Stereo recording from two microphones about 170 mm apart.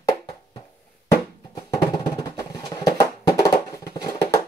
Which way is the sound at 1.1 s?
20° left (ahead or behind).